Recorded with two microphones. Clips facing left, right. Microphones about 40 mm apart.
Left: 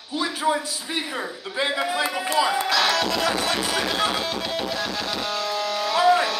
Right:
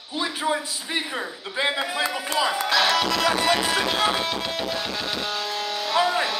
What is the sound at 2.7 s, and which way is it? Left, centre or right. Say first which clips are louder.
Speech: right 1 dB; centre.